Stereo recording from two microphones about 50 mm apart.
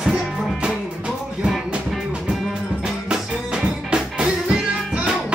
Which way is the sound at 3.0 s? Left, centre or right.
Centre.